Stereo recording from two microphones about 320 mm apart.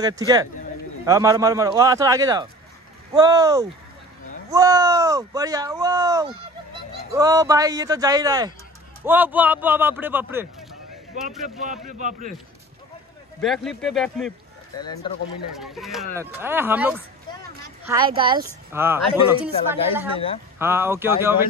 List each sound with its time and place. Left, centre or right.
0.0 s speech: centre
11.4 s speech: right
13.4 s speech: centre
15.5 s speech: centre